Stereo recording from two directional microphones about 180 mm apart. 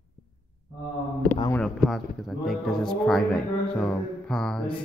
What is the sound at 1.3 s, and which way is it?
Speech, 20° left (ahead or behind).